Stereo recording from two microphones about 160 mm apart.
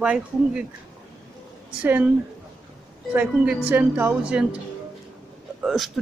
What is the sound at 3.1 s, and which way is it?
A woman's voice, 10° right (ahead or behind).